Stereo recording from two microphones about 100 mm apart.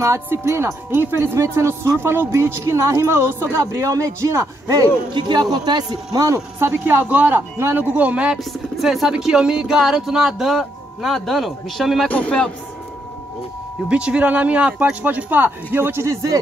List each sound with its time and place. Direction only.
0.0 s speech: 30° right (ahead or behind)
5.1 s speech: 50° right (ahead or behind); by 12.1 s centre (ahead or behind)
12.1 s speech: 10° left (ahead or behind)
13.8 s speech: 10° right (ahead or behind); by 16.3 s 35° right (ahead or behind)